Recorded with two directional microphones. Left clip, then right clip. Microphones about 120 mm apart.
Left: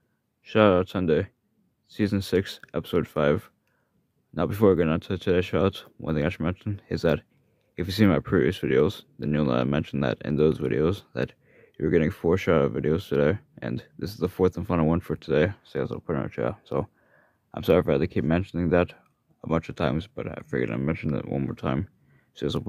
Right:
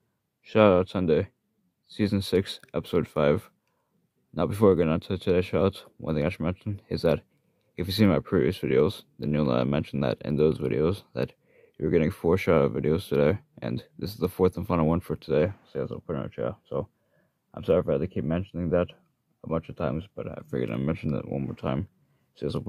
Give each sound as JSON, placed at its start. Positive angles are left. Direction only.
{"t": 0.4, "sound": "speech", "side_deg": 10}
{"t": 18.0, "sound": "speech", "side_deg": 30}
{"t": 20.2, "sound": "speech", "side_deg": 15}
{"t": 21.2, "sound": "speech", "side_deg": 20}